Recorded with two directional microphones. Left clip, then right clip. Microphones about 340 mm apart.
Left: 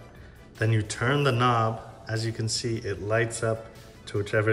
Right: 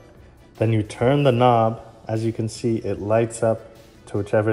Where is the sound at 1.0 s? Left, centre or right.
Right.